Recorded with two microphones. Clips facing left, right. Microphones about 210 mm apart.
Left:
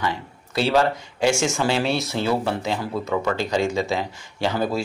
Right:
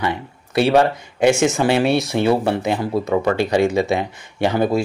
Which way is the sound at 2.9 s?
35° right (ahead or behind).